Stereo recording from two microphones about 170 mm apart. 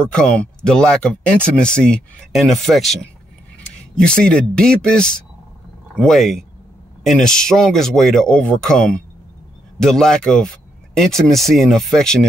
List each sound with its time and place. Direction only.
0.0 s speech: 5° left (ahead or behind)